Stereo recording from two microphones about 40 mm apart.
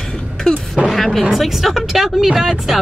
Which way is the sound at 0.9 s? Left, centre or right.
Centre.